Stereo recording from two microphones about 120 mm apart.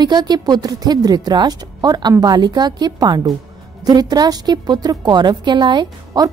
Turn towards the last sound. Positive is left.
turn(degrees=-35)  # may be behind; listen again after turning